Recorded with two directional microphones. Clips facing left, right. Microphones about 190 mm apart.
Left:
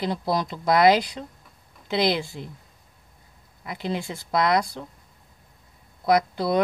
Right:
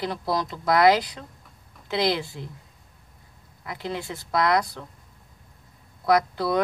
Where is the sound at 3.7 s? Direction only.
20° left (ahead or behind).